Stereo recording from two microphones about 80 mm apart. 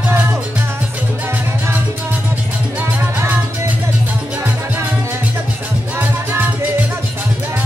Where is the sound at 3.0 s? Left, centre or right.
Right.